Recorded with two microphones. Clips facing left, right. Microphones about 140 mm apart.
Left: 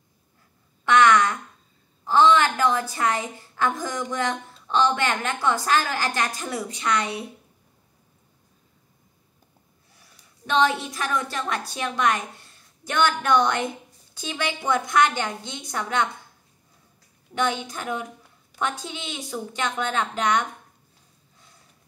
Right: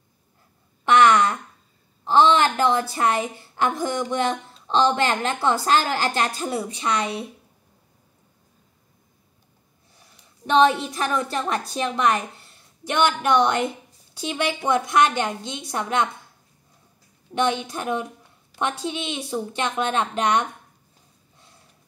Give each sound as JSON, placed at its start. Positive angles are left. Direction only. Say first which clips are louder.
{"t": 0.8, "sound": "a sound", "louder": "right 1 dB", "side_deg": -30}
{"t": 2.0, "sound": "a woman's voice", "louder": "right 1 dB", "side_deg": -30}
{"t": 3.1, "sound": "speech", "louder": "right 3 dB", "side_deg": -20}
{"t": 9.9, "sound": "a woman's voice", "louder": "right 3 dB", "side_deg": -25}
{"t": 17.3, "sound": "speech", "louder": "right 3 dB", "side_deg": -25}